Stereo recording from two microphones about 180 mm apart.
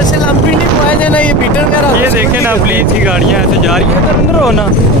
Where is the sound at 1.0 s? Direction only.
10° left (ahead or behind).